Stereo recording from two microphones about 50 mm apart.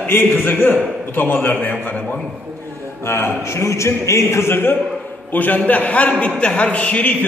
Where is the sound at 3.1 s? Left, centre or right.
Left.